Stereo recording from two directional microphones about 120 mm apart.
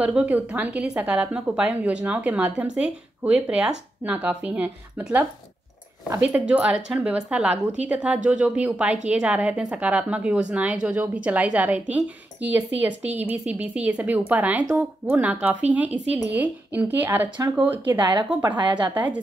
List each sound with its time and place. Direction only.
0.0 s a woman's voice: 10° right (ahead or behind)
6.2 s a woman's voice: 10° right (ahead or behind)
17.9 s a woman's voice: 40° right (ahead or behind)